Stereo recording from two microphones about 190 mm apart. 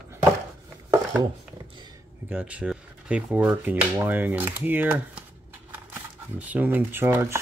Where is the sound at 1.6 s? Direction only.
25° right (ahead or behind).